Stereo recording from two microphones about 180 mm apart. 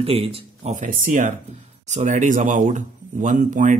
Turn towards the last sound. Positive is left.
turn(degrees=-45)  # may be behind; listen again after turning